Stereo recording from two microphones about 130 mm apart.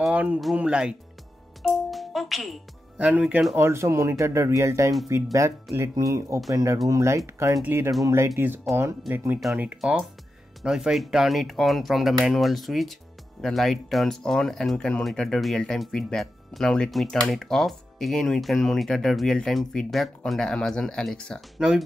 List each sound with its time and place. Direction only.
0.0 s speech: 10° right (ahead or behind)
1.6 s music: centre (ahead or behind)
3.0 s speech: 10° right (ahead or behind)
3.5 s speech: 20° right (ahead or behind)